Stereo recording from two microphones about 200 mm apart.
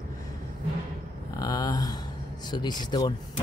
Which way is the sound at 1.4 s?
20° left (ahead or behind).